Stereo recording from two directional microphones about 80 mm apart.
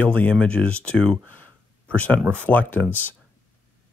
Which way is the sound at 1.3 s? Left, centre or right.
Centre.